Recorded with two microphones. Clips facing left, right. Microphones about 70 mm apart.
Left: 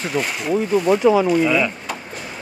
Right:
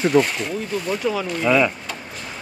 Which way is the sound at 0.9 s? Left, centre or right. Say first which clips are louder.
Left 9 dB; centre.